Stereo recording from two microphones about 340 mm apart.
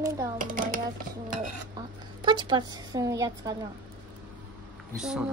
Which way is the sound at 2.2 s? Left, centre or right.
Centre.